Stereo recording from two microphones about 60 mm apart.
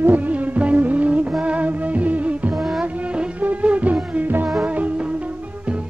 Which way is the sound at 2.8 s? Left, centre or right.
Right.